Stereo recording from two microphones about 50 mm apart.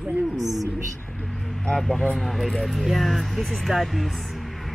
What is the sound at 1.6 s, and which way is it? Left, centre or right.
Speech, centre.